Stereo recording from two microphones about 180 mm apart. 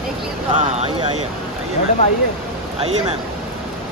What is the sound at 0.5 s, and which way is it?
Speech, 35° right (ahead or behind).